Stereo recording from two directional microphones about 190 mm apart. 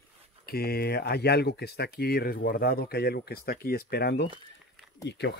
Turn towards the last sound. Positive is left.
turn(degrees=65)  # may be behind; listen again after turning